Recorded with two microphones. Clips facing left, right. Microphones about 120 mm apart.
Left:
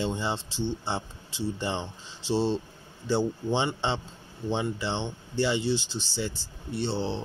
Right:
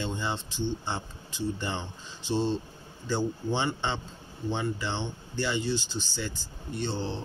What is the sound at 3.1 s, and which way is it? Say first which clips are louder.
Speech: left 3 dB; 25° left (ahead or behind).